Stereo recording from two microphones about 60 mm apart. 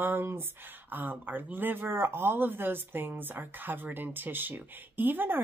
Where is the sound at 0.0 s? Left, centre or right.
Right.